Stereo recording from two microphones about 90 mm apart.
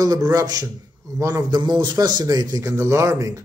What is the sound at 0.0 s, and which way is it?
Speech, 40° right (ahead or behind).